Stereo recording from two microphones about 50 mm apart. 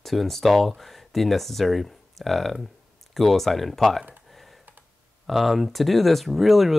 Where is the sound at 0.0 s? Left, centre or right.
Centre.